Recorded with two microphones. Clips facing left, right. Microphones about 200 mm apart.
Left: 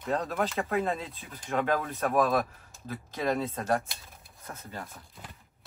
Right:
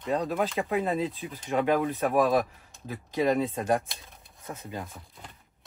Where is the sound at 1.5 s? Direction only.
15° right (ahead or behind).